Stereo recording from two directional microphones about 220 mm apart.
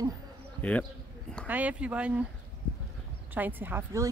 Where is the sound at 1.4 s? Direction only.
5° right (ahead or behind).